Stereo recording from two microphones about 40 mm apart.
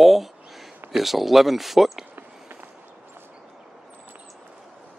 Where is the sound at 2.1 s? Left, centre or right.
Right.